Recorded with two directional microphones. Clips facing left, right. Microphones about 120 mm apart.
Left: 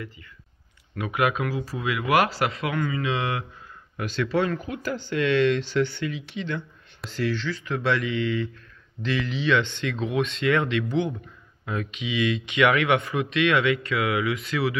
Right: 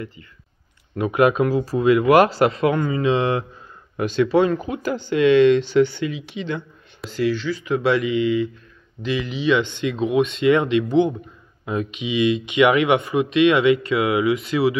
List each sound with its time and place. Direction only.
0.9 s speech: 35° right (ahead or behind)
3.9 s speech: 20° right (ahead or behind)
7.0 s speech: 5° right (ahead or behind)